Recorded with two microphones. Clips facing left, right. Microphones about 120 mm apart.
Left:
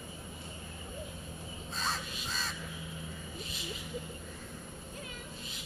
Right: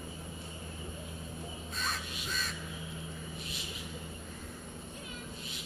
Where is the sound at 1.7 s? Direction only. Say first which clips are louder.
Left 3 dB; 30° left (ahead or behind).